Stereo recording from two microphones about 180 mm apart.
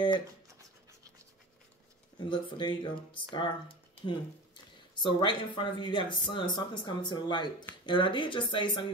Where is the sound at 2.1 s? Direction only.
25° left (ahead or behind).